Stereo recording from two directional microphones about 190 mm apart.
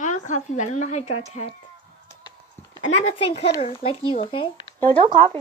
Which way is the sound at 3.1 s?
30° left (ahead or behind).